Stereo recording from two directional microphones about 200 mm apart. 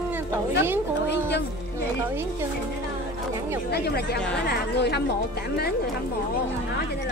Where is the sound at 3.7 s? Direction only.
55° left (ahead or behind).